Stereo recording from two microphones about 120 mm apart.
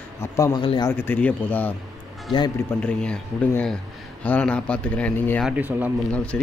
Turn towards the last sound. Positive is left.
turn(degrees=5)  # may be behind; listen again after turning